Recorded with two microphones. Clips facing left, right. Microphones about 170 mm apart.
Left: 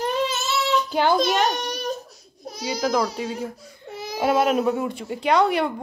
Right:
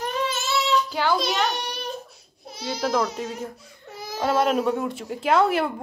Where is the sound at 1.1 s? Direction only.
50° left (ahead or behind).